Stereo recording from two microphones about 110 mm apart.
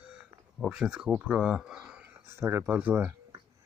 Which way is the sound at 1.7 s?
10° right (ahead or behind).